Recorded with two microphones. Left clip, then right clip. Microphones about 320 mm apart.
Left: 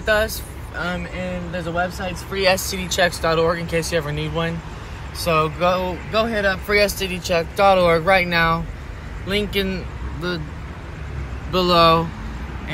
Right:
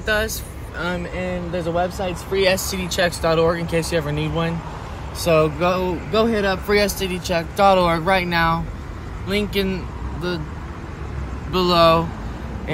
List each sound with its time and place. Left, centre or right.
0.0 s speech: centre
1.5 s speech: centre
2.0 s speech: centre
11.5 s speech: centre